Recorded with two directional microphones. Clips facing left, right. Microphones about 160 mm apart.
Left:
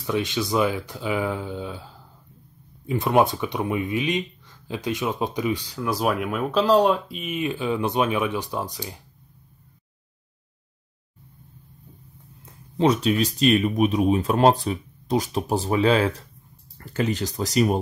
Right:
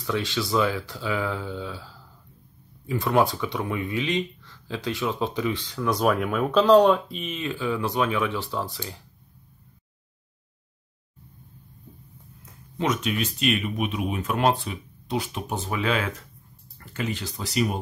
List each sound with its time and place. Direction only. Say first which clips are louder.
0.0 s speech: left 2 dB; 20° left (ahead or behind)
2.9 s speech: left 2 dB; 20° left (ahead or behind)
12.7 s speech: left 6 dB; 30° left (ahead or behind)